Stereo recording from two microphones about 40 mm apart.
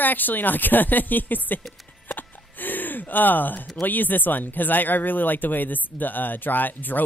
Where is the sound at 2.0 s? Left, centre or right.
Left.